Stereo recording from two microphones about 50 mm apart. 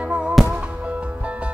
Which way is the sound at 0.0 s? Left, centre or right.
Right.